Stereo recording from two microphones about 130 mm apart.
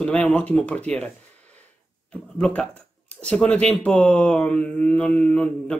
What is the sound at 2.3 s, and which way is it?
Speech, 10° left (ahead or behind).